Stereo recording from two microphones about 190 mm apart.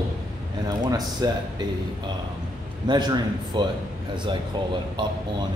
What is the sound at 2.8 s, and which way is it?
Speech, 25° right (ahead or behind).